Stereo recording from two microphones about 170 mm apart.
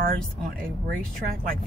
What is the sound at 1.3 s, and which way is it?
Speech, 60° right (ahead or behind).